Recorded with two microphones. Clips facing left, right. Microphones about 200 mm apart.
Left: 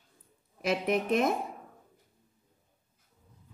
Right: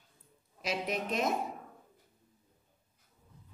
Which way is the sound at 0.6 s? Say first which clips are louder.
Left 6 dB; 55° left (ahead or behind).